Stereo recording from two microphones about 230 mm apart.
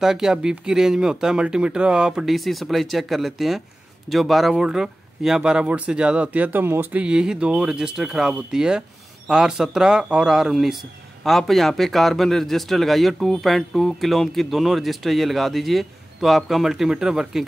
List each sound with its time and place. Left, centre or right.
0.0 s speech: centre